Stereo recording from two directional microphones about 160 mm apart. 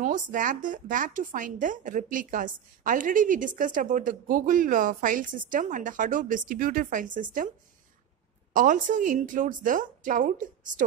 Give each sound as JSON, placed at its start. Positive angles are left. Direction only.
{"t": 0.0, "sound": "speech", "side_deg": -55}
{"t": 8.5, "sound": "speech", "side_deg": -55}